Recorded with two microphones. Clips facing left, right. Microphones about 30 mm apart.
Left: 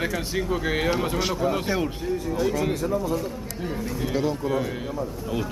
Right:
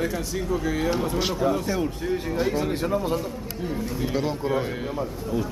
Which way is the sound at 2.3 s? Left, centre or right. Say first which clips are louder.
Left 1 dB; right.